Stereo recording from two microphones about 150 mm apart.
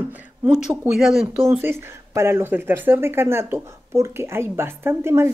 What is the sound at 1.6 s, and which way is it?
Speech, 15° right (ahead or behind).